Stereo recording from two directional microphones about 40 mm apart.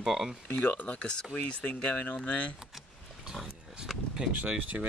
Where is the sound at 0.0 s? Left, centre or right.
Centre.